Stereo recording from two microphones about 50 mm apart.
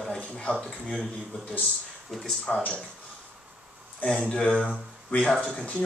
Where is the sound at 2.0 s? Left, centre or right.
Centre.